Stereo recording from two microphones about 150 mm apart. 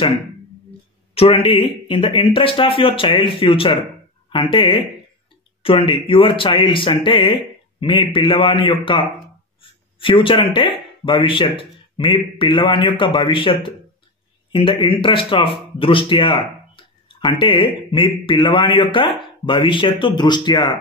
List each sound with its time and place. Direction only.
1.1 s speech: 40° left (ahead or behind)